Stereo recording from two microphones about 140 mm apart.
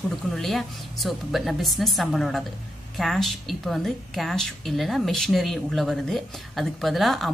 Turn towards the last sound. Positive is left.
turn(degrees=0)  # may be behind; listen again after turning